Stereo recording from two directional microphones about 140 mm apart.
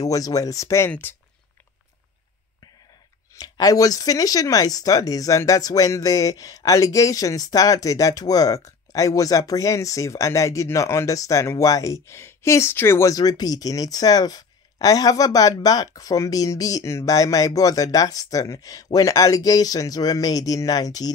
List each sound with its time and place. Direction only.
0.0 s speech: 25° left (ahead or behind)
3.3 s speech: 25° left (ahead or behind)